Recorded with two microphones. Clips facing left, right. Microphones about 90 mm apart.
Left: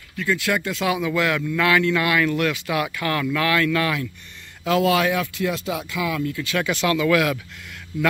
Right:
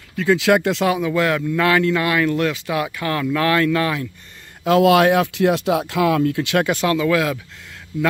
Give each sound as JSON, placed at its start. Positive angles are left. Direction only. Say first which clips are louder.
{"t": 0.2, "sound": "speech", "louder": "right 7 dB", "side_deg": -85}
{"t": 0.8, "sound": "speech", "louder": "right 3 dB", "side_deg": -35}
{"t": 4.6, "sound": "speech", "louder": "right 6 dB", "side_deg": -50}
{"t": 6.6, "sound": "speech", "louder": "even", "side_deg": -40}